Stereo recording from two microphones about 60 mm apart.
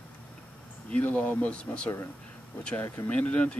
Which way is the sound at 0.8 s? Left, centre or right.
Left.